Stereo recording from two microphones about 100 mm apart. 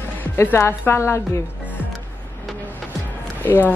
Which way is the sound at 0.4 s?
25° left (ahead or behind).